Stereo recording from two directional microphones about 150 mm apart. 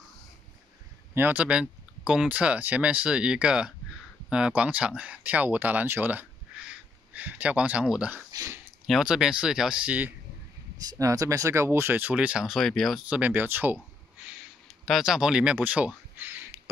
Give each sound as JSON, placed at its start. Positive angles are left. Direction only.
{"t": 1.1, "sound": "speech", "side_deg": -10}
{"t": 8.3, "sound": "speech", "side_deg": -20}
{"t": 8.8, "sound": "speech", "side_deg": -5}
{"t": 10.9, "sound": "speech", "side_deg": -20}
{"t": 14.9, "sound": "speech", "side_deg": -5}